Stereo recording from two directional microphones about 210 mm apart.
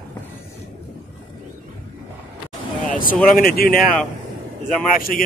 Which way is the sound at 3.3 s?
45° left (ahead or behind).